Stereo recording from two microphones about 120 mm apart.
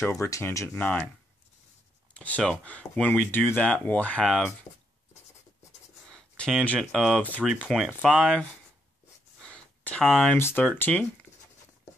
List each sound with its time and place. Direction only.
0.0 s speech: 20° left (ahead or behind)
2.1 s speech: 10° left (ahead or behind)
6.0 s speech: 5° left (ahead or behind)
7.2 s speech: 10° left (ahead or behind)
7.7 s speech: centre (ahead or behind)
9.4 s a sound: 10° left (ahead or behind)
10.3 s speech: 15° left (ahead or behind)